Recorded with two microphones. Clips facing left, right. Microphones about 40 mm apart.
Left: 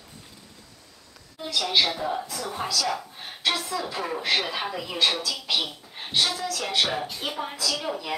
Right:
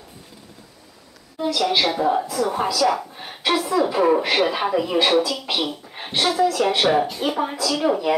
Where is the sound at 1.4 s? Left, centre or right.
Centre.